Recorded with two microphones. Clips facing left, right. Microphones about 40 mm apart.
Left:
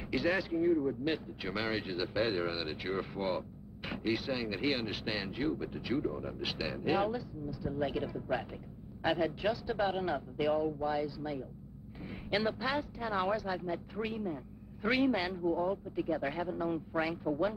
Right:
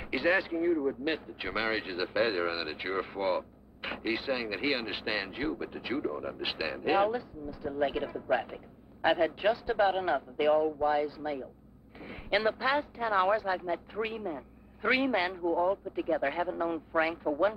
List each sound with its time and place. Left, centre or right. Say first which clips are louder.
0.0 s speech: right 4 dB; right